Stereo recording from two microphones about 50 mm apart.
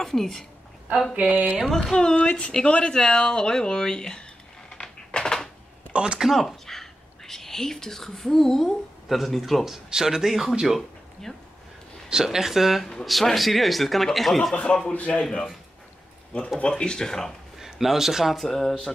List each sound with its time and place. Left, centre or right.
0.0 s speech: centre
1.1 s a sound: right
1.7 s speech: centre
4.6 s typewriter: centre
6.1 s speech: centre
6.4 s speech: centre
9.7 s speech: centre
11.3 s speech: centre
12.1 s speech: centre
14.5 s a man's voice: left
16.5 s speech: centre
17.6 s speech: centre